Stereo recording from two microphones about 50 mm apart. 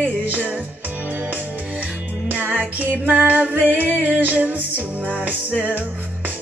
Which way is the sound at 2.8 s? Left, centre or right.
Right.